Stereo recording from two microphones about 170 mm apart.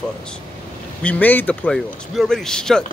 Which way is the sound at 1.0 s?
10° left (ahead or behind).